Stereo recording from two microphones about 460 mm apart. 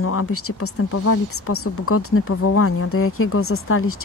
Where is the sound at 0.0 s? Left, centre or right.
Left.